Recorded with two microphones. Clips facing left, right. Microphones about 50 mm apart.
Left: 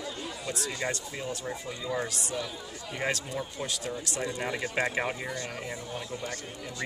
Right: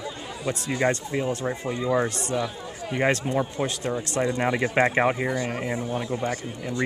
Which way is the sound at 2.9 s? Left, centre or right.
Right.